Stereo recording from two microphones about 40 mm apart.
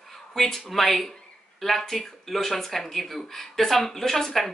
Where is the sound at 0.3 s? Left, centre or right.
Centre.